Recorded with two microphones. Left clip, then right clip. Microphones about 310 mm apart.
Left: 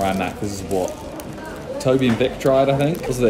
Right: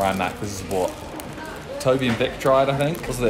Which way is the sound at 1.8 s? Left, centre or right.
Centre.